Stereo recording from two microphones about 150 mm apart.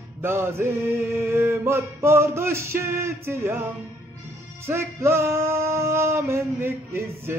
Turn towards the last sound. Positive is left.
turn(degrees=-15)  # may be behind; listen again after turning